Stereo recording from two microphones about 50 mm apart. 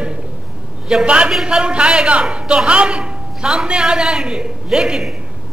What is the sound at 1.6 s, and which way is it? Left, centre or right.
A man's voice, centre.